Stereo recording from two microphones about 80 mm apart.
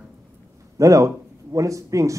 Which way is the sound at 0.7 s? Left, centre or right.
Right.